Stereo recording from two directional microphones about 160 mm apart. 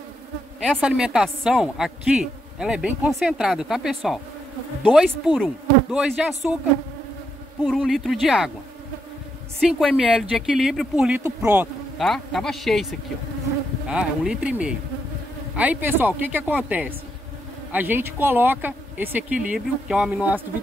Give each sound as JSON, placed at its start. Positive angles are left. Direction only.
{"t": 0.6, "sound": "a woman's voice", "side_deg": -5}
{"t": 7.6, "sound": "a woman's voice", "side_deg": 0}
{"t": 9.6, "sound": "a woman's voice", "side_deg": 0}
{"t": 11.2, "sound": "speech", "side_deg": -15}
{"t": 12.0, "sound": "a woman's voice", "side_deg": 0}
{"t": 13.8, "sound": "a woman's voice", "side_deg": -5}